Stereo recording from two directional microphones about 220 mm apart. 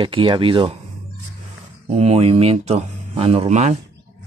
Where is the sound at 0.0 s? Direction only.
25° right (ahead or behind).